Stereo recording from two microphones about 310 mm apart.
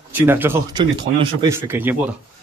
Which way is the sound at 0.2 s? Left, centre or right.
Centre.